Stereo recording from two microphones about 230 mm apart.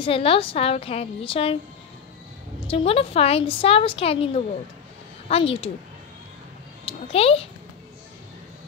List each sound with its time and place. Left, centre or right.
0.0 s a woman's voice: left
2.6 s a woman's voice: left
5.3 s a woman's voice: left
6.9 s a woman's voice: left